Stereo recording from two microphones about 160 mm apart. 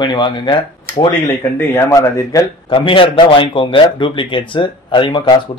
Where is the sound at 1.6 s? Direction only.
15° left (ahead or behind).